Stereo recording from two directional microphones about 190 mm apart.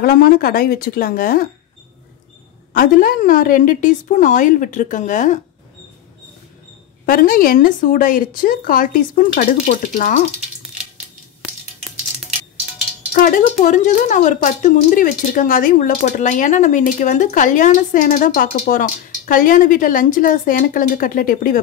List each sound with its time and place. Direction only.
0.0 s a woman's voice: 50° left (ahead or behind)
2.7 s a woman's voice: 45° left (ahead or behind)
7.1 s a woman's voice: 50° left (ahead or behind)
13.1 s a woman's voice: 45° left (ahead or behind)